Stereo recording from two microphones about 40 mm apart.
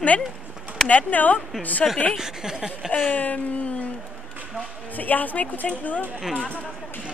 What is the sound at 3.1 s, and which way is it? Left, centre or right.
Speech, left.